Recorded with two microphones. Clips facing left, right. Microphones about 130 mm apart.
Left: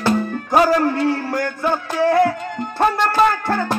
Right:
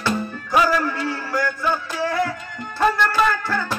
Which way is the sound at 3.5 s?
55° left (ahead or behind).